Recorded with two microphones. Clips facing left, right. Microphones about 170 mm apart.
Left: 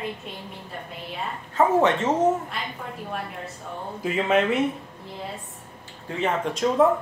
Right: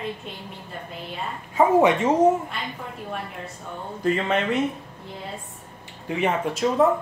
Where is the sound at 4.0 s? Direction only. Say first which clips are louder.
Left 1 dB; 5° left (ahead or behind).